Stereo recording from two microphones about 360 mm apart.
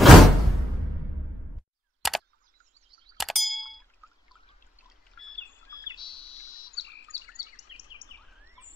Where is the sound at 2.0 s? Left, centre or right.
Centre.